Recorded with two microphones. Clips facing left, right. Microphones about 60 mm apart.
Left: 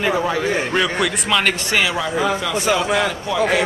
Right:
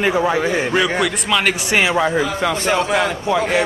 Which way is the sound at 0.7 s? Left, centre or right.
Centre.